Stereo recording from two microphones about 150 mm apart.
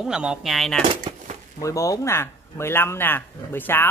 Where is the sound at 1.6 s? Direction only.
20° left (ahead or behind).